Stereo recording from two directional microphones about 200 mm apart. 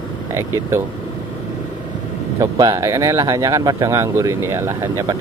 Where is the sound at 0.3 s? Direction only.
10° right (ahead or behind).